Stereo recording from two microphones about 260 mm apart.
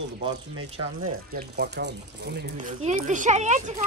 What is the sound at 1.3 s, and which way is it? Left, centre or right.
Speech, right.